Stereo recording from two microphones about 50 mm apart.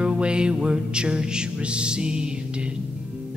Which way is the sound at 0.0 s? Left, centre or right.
Right.